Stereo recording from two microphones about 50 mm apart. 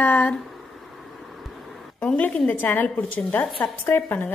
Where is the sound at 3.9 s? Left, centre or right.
Left.